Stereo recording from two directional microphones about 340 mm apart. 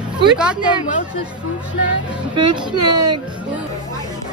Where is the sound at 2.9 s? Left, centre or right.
Right.